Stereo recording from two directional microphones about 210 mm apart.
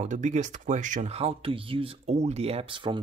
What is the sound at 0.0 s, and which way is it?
Speech, 35° right (ahead or behind).